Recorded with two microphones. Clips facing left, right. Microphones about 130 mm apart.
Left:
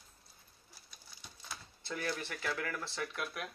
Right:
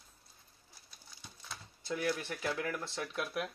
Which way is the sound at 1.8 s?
10° right (ahead or behind).